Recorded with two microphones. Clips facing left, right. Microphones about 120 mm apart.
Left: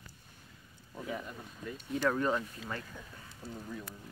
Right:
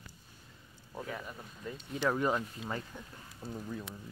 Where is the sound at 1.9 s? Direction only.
10° right (ahead or behind).